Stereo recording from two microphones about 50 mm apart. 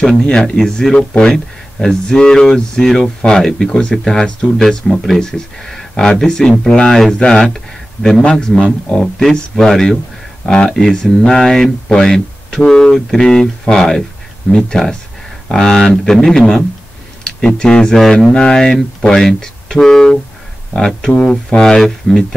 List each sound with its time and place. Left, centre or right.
0.0 s a man's voice: centre
10.4 s speech: centre
17.2 s speech: centre